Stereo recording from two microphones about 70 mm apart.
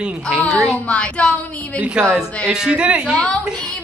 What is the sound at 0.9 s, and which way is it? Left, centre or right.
Speech, centre.